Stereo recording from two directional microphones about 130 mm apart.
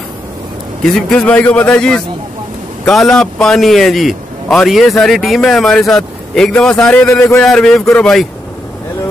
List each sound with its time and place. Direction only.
0.8 s a man's voice: 5° left (ahead or behind)
7.1 s speech: 25° left (ahead or behind)
7.4 s a man's voice: 5° left (ahead or behind)